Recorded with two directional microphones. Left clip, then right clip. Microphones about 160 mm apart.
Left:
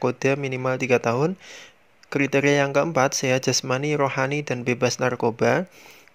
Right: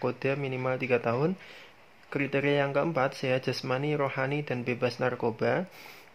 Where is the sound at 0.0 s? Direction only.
35° left (ahead or behind).